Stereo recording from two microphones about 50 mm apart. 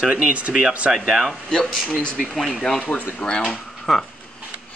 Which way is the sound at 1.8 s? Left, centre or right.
Left.